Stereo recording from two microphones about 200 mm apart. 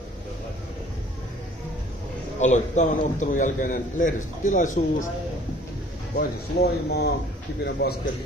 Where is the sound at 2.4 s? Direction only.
35° left (ahead or behind).